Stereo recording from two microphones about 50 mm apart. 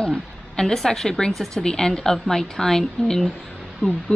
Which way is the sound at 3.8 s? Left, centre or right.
Left.